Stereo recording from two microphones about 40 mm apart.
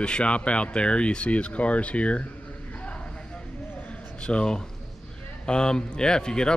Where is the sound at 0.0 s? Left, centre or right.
Left.